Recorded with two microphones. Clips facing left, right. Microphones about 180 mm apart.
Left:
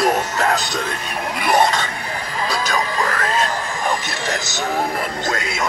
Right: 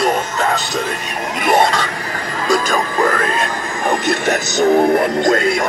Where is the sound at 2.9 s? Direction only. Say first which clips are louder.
Right 4 dB; 55° right (ahead or behind).